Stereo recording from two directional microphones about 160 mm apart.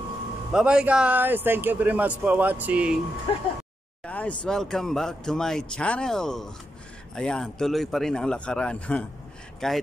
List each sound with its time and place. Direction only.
0.5 s speech: 5° right (ahead or behind)
3.3 s speech: 30° left (ahead or behind)
4.0 s a sound: 10° left (ahead or behind)
4.5 s speech: centre (ahead or behind)